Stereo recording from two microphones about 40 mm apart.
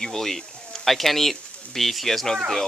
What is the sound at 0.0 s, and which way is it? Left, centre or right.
Speech, centre.